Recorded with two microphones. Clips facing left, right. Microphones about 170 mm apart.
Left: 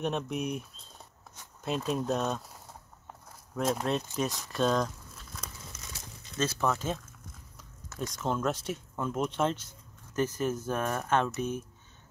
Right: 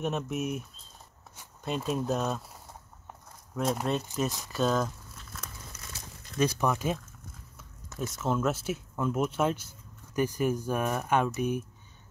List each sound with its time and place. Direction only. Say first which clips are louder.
0.0 s speech: right 1 dB; centre (ahead or behind)
3.5 s speech: even; centre (ahead or behind)
6.3 s speech: right 2 dB; 15° right (ahead or behind)